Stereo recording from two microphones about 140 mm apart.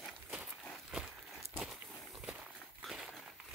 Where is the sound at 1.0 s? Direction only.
Centre (ahead or behind).